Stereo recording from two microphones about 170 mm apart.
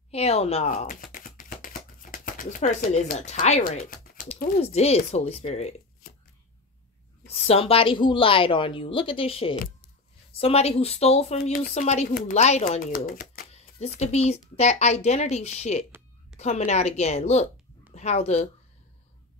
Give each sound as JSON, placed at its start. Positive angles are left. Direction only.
{"t": 0.1, "sound": "speech", "side_deg": 35}
{"t": 0.7, "sound": "a sound", "side_deg": 55}
{"t": 3.2, "sound": "speech", "side_deg": 40}
{"t": 3.6, "sound": "speech", "side_deg": 55}
{"t": 4.6, "sound": "speech", "side_deg": 40}
{"t": 7.2, "sound": "speech", "side_deg": 35}
{"t": 13.5, "sound": "speech", "side_deg": 40}